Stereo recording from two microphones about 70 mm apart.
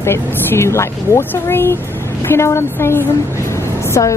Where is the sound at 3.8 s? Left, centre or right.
Left.